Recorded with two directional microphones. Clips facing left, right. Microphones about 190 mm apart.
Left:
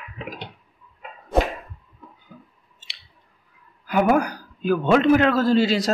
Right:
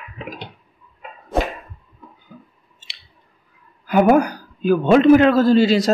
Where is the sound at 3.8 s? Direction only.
25° right (ahead or behind).